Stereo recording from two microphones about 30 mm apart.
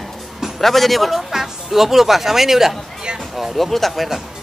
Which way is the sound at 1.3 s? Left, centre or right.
Centre.